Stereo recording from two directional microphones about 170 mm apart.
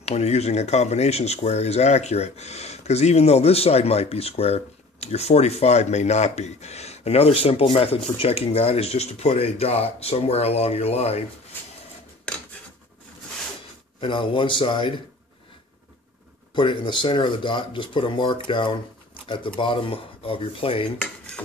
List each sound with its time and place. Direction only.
0.0 s speech: 40° left (ahead or behind)
14.0 s speech: 30° left (ahead or behind)
16.5 s speech: 30° left (ahead or behind)